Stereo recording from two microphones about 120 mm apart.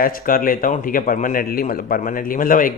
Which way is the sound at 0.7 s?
90° left.